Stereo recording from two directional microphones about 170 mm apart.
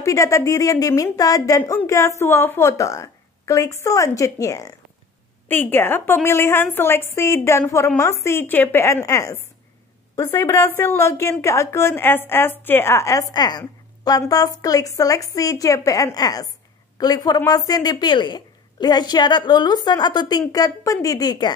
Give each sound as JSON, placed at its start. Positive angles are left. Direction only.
{"t": 0.0, "sound": "a woman's voice", "side_deg": 20}